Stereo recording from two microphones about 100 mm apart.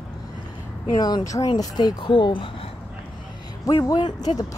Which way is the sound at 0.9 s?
40° left (ahead or behind).